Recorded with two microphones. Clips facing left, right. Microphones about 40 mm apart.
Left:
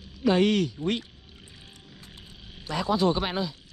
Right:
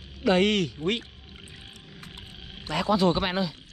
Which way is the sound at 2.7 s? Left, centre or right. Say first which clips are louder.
Right 1 dB; right.